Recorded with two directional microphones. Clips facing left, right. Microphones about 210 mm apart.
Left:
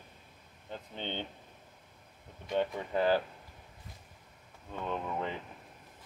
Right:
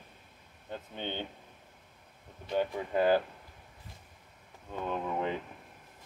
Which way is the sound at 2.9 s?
15° right (ahead or behind).